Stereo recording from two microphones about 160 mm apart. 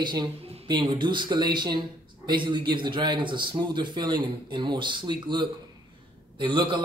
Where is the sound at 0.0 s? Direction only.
25° right (ahead or behind).